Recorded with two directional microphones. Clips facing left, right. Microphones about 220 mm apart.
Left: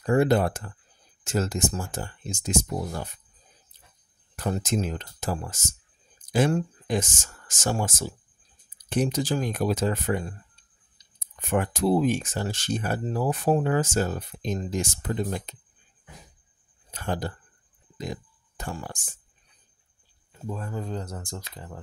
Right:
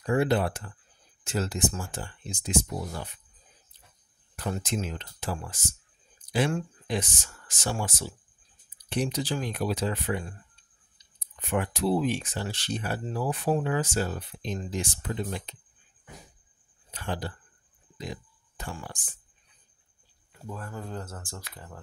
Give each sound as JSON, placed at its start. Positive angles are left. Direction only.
{"t": 0.0, "sound": "speech", "side_deg": 45}
{"t": 4.4, "sound": "speech", "side_deg": 40}
{"t": 16.9, "sound": "speech", "side_deg": 45}
{"t": 20.4, "sound": "speech", "side_deg": 20}